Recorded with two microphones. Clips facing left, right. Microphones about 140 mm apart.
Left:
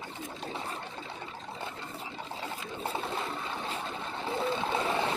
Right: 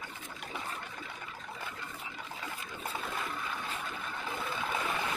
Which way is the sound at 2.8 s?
30° left (ahead or behind).